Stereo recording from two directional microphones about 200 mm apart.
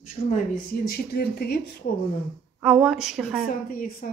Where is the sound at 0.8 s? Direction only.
50° left (ahead or behind).